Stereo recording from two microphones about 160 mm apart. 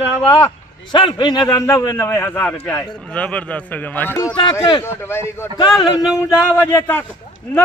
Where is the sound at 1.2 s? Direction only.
25° left (ahead or behind).